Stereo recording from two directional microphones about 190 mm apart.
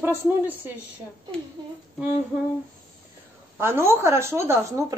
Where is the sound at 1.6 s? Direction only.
25° right (ahead or behind).